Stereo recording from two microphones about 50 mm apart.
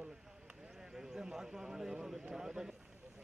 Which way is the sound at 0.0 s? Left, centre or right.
Centre.